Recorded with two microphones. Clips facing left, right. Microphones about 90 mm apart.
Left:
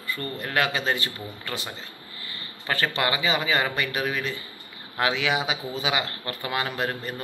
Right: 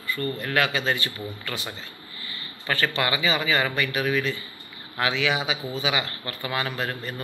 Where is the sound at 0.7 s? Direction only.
40° left (ahead or behind).